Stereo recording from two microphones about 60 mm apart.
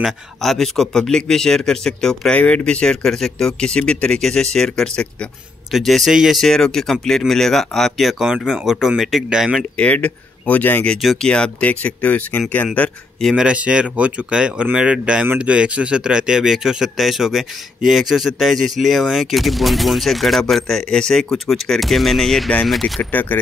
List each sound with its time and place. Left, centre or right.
0.0 s a man's voice: centre
2.3 s a man's voice: left
5.7 s speech: centre
6.4 s a man's voice: centre
9.8 s speech: left
11.0 s speech: centre
11.2 s speech: centre
13.4 s speech: centre
23.1 s speech: left